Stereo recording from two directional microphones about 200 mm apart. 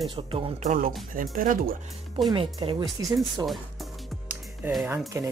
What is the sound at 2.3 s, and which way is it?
Speech, 25° right (ahead or behind).